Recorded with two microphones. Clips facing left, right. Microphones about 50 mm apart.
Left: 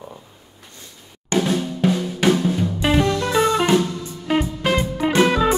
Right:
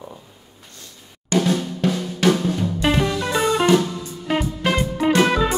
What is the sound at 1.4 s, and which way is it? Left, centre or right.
Drum, centre.